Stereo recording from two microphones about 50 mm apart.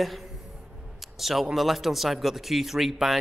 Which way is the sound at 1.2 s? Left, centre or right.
Centre.